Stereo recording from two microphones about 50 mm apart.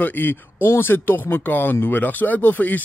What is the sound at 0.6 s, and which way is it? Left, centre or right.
Speech, left.